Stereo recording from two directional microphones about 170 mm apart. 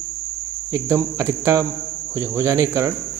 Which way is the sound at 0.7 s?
15° right (ahead or behind).